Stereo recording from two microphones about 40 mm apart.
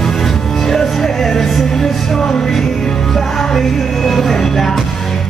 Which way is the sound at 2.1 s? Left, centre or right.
Left.